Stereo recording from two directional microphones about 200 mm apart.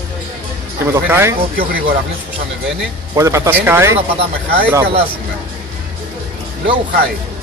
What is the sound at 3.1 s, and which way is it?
Speech, 15° right (ahead or behind).